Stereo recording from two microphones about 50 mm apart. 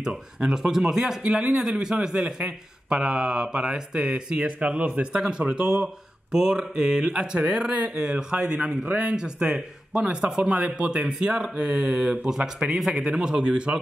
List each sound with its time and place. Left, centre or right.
0.0 s speech: centre
1.2 s speech: centre
2.1 s speech: right